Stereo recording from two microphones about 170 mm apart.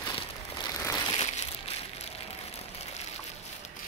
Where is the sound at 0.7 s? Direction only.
20° left (ahead or behind).